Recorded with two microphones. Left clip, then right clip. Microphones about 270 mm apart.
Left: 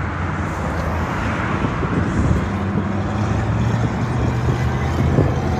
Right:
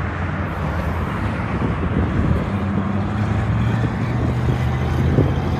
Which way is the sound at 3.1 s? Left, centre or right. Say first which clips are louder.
Left 2 dB; left.